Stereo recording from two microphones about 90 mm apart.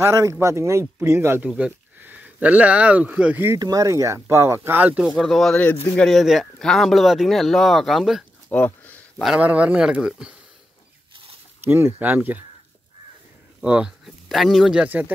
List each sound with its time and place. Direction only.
0.0 s speech: 35° right (ahead or behind); by 3.4 s 15° right (ahead or behind)
3.5 s speech: 40° right (ahead or behind); by 5.0 s 20° right (ahead or behind)
5.2 s speech: centre (ahead or behind)
8.5 s a sound: 20° left (ahead or behind)
9.4 s speech: 15° right (ahead or behind)
11.6 s speech: 25° right (ahead or behind)
13.7 s speech: 15° right (ahead or behind)
14.0 s speech: centre (ahead or behind)